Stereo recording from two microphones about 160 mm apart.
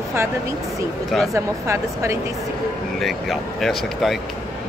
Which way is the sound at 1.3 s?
20° right (ahead or behind).